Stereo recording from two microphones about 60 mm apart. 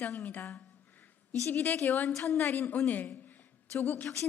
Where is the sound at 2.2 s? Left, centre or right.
Left.